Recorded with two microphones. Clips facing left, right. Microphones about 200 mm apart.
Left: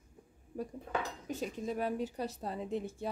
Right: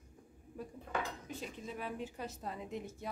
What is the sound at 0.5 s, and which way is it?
Speech, 40° left (ahead or behind).